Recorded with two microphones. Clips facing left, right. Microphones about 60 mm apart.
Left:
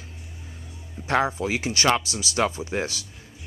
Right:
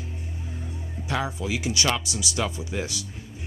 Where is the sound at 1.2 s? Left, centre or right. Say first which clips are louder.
Left 2 dB; left.